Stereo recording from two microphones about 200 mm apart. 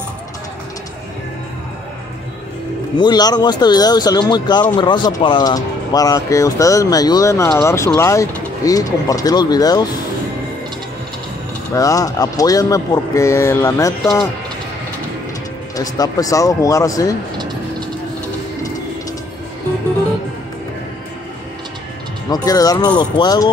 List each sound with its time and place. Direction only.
3.0 s speech: 20° left (ahead or behind)
11.7 s speech: 15° left (ahead or behind)
15.7 s speech: 20° left (ahead or behind)
22.3 s speech: 20° left (ahead or behind)